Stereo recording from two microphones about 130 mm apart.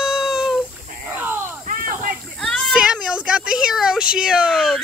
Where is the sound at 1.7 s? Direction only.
90° right.